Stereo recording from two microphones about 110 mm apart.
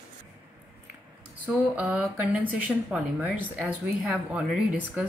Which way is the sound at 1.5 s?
10° right (ahead or behind).